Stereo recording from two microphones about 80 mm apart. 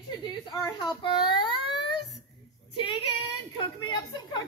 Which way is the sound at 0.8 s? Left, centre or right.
Left.